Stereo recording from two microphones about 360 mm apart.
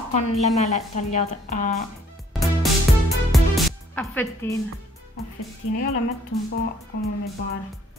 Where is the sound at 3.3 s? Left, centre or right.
Centre.